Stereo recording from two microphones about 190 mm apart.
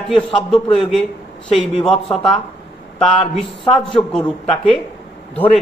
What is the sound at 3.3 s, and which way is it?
A man's voice, centre (ahead or behind).